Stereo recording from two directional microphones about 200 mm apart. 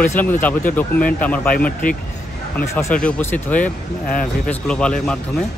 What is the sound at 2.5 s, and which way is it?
Speech, 10° left (ahead or behind).